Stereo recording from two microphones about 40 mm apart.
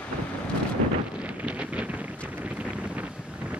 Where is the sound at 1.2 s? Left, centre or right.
Right.